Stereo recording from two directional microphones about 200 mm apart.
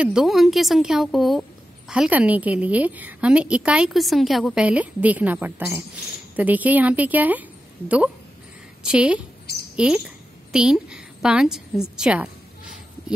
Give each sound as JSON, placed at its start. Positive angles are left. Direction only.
{"t": 0.0, "sound": "a woman's voice", "side_deg": -5}
{"t": 8.8, "sound": "a woman's voice", "side_deg": -5}